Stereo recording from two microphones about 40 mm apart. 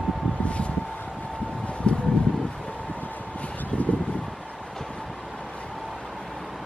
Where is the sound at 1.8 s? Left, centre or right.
Left.